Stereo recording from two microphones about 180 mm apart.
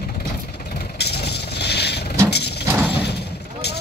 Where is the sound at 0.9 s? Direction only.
65° left (ahead or behind).